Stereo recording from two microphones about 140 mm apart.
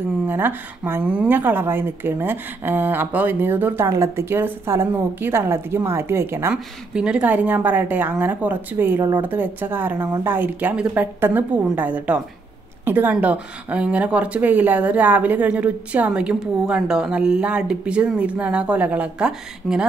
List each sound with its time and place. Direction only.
0.3 s speech: 15° right (ahead or behind)
6.5 s speech: 5° right (ahead or behind)